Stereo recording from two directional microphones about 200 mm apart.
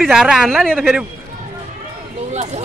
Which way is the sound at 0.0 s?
5° right (ahead or behind).